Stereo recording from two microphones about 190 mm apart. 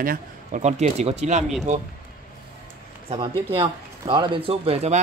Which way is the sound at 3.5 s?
25° right (ahead or behind).